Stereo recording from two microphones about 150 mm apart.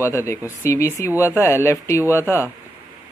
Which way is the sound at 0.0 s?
20° left (ahead or behind).